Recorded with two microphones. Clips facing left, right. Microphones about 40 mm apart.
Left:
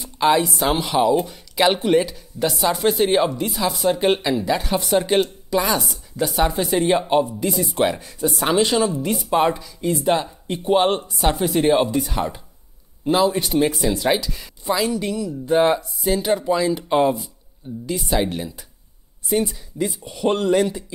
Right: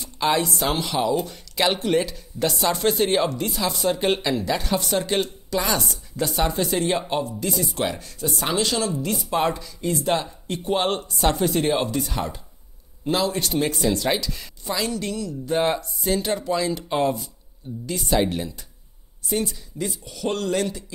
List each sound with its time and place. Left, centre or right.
0.0 s speech: centre
7.4 s a woman's voice: centre